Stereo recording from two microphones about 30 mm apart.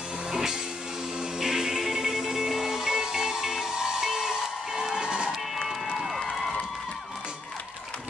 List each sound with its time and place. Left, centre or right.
0.3 s music: centre
5.0 s music: right